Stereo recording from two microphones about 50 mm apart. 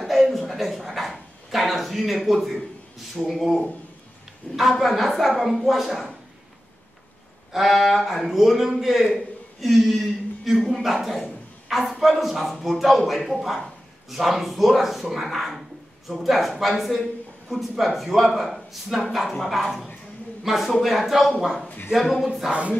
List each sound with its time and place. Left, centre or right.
0.0 s a sound: centre
3.3 s speech: centre
7.5 s a man's voice: centre
22.5 s music: right